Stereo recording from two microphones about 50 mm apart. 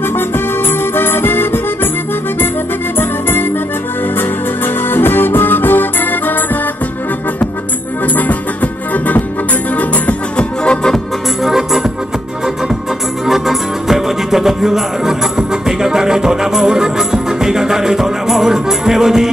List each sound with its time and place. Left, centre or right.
0.1 s accordion: left
3.0 s music: left
4.8 s music: left
8.9 s music: left
10.6 s music: centre
11.4 s music: centre
13.3 s music: centre